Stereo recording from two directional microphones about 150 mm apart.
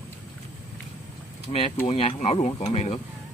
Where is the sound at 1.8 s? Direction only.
40° left (ahead or behind).